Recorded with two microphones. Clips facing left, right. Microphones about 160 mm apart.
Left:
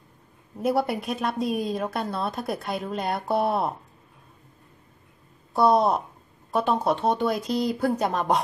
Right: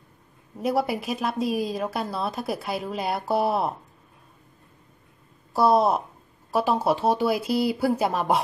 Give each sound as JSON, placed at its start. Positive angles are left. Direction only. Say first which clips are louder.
{"t": 0.6, "sound": "a woman's voice", "louder": "even", "side_deg": 0}
{"t": 5.5, "sound": "a woman's voice", "louder": "even", "side_deg": 0}